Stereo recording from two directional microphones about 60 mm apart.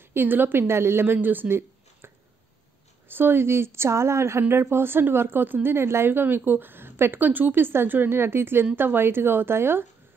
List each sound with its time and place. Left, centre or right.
0.1 s a woman's voice: right
3.1 s a woman's voice: right